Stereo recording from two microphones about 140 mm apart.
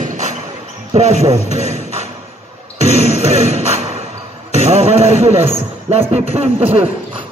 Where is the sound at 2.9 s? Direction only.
50° right (ahead or behind).